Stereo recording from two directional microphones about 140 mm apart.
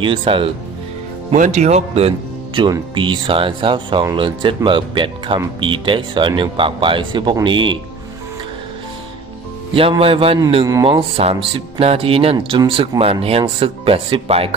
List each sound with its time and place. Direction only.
0.0 s speech: 35° right (ahead or behind)
1.3 s speech: 60° right (ahead or behind)
2.6 s speech: 35° right (ahead or behind)
9.8 s speech: 40° right (ahead or behind)